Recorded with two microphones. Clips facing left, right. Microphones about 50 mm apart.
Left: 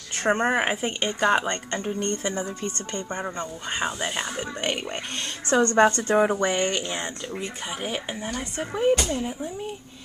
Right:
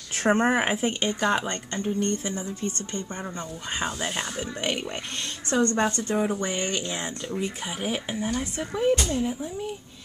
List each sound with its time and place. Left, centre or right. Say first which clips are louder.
0.2 s speech: even; centre
1.2 s speech: left 4 dB; centre
1.7 s speech: even; left
2.0 s speech: even; left
3.1 s speech: left 4 dB; left
3.3 s speech: left 2 dB; centre
5.5 s speech: left 5 dB; left
6.4 s speech: left 5 dB; left
6.8 s speech: left 1 dB; centre
7.4 s speech: even; centre
8.4 s speech: even; centre